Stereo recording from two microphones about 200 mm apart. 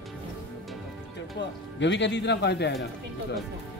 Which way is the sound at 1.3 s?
60° left (ahead or behind).